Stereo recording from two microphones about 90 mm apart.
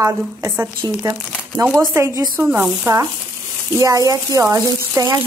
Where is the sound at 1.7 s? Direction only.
25° right (ahead or behind).